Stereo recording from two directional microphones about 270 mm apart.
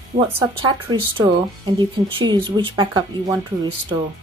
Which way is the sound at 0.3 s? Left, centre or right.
Centre.